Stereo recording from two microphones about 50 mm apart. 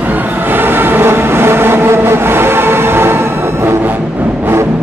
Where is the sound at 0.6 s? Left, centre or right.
Right.